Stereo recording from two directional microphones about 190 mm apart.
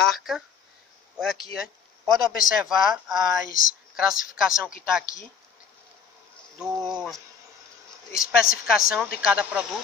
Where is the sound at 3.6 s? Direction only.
45° left (ahead or behind).